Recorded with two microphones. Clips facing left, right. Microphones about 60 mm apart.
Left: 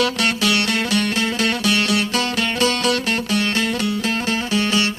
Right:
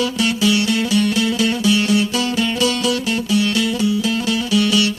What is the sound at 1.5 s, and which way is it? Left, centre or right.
Music, left.